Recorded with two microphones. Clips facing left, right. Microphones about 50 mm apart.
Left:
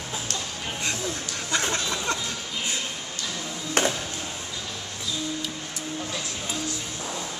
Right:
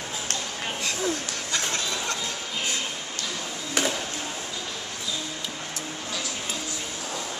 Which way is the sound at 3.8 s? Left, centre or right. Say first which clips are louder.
Left 2 dB; left.